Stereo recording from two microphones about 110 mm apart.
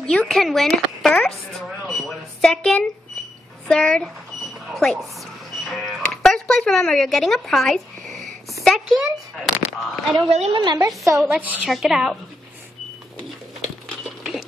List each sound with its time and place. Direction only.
0.0 s a woman's voice: 5° left (ahead or behind)
4.6 s a sound: centre (ahead or behind)
5.7 s speech: centre (ahead or behind)
10.2 s a woman's voice: 75° right (ahead or behind)
10.5 s a woman's voice: 40° right (ahead or behind)
11.2 s a woman's voice: 15° right (ahead or behind)
13.6 s cutlery: centre (ahead or behind)